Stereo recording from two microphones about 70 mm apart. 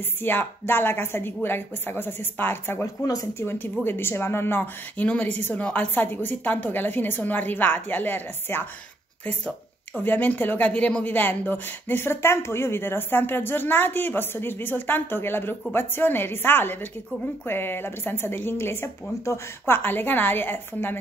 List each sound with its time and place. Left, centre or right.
0.2 s speech: left
2.8 s speech: left
3.3 s a woman's voice: left
9.9 s a woman's voice: left
11.1 s speech: left